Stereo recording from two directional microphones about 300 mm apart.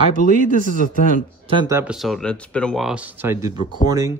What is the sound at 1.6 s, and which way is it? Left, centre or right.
Speech, centre.